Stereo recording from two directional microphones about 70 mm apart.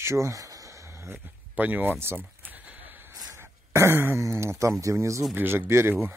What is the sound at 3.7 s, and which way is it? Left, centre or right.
Speech, right.